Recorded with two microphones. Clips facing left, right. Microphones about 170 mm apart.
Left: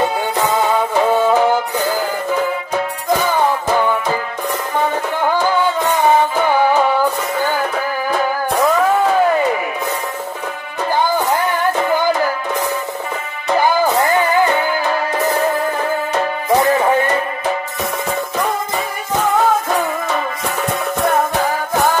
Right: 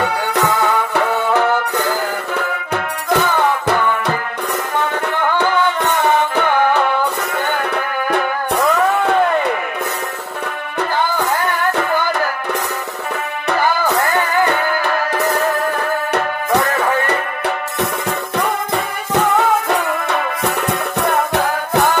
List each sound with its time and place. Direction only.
0.0 s music: 65° right (ahead or behind)
5.4 s music: 65° right (ahead or behind)
19.1 s music: 65° right (ahead or behind)